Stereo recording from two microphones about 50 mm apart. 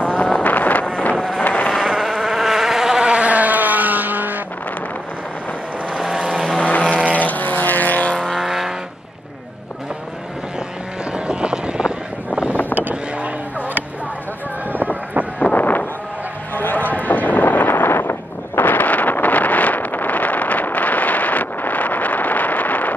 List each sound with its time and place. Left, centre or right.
0.0 s vehicle: left
0.5 s vehicle: left
0.8 s wind noise: left
1.4 s insect: left
2.0 s insect: centre; by 4.4 s right
6.0 s vehicle: centre
6.5 s vehicle: left
8.1 s vehicle: centre
8.4 s vehicle: centre
11.1 s vehicle: right
12.7 s vehicle: right
15.5 s wind noise: left
18.6 s wind noise: left